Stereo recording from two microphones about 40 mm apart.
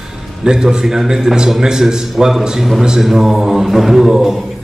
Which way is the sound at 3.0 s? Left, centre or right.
Centre.